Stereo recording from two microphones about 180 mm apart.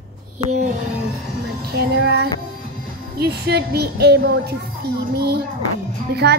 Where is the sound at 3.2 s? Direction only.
65° right (ahead or behind).